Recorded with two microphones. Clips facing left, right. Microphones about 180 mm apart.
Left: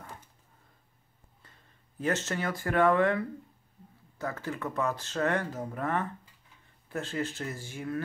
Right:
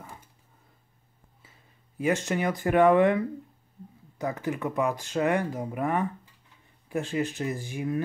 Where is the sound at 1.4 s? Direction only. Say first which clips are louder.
Right 1 dB; 10° right (ahead or behind).